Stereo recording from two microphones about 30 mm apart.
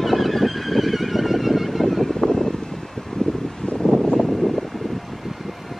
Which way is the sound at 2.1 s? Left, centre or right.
Centre.